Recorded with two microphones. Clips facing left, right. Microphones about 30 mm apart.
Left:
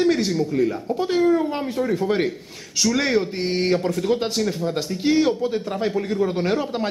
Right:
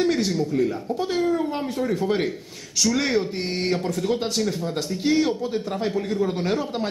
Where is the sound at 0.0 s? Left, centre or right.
Centre.